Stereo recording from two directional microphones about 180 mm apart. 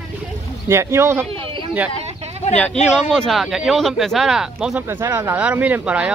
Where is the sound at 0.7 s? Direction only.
15° right (ahead or behind).